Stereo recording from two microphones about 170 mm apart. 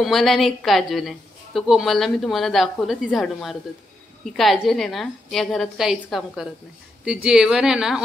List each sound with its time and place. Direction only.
0.0 s a woman's voice: centre (ahead or behind)